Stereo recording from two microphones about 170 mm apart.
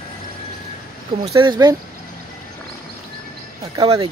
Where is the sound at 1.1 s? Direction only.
25° right (ahead or behind).